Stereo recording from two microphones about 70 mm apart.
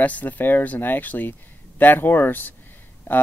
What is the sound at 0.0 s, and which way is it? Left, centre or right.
Speech, left.